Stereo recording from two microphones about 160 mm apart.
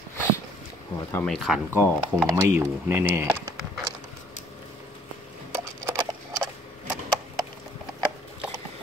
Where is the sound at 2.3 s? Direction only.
15° right (ahead or behind).